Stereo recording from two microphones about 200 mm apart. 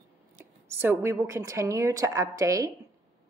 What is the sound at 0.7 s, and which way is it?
A woman's voice, 10° right (ahead or behind).